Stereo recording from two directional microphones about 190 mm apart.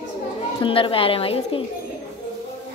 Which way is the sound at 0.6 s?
25° left (ahead or behind).